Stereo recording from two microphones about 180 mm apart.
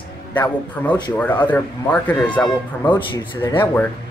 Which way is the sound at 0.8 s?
10° left (ahead or behind).